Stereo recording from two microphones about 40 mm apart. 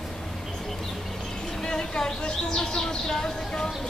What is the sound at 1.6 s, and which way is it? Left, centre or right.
Speech, centre.